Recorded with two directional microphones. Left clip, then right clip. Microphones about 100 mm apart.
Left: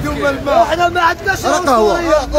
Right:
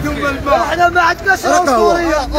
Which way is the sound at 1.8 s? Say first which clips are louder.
Even; 25° left (ahead or behind).